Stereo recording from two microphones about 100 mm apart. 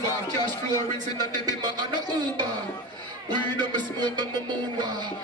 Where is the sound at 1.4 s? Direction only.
40° right (ahead or behind).